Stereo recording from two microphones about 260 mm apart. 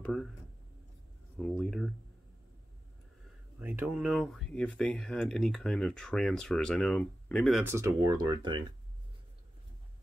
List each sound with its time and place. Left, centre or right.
0.0 s speech: centre
1.4 s speech: centre
3.5 s speech: centre